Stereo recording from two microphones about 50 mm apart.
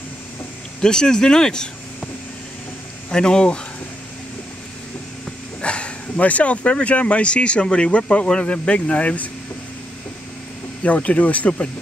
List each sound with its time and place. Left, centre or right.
0.7 s speech: centre
3.1 s speech: centre
5.6 s speech: left
10.8 s speech: left